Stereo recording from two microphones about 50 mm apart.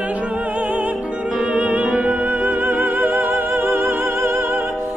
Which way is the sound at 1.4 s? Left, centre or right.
Right.